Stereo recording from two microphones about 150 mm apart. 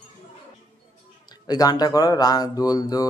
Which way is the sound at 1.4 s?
25° left (ahead or behind).